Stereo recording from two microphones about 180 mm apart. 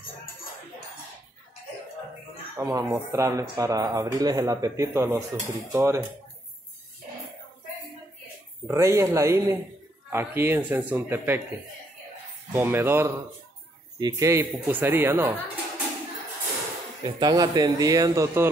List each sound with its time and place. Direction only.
2.5 s speech: 20° right (ahead or behind)
8.6 s speech: 15° right (ahead or behind)
12.5 s speech: 10° right (ahead or behind)
17.0 s speech: 20° right (ahead or behind)